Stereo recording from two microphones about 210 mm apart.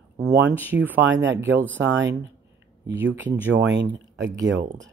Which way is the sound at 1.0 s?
60° right (ahead or behind).